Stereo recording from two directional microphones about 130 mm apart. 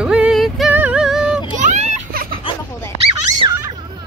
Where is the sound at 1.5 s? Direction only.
65° right (ahead or behind).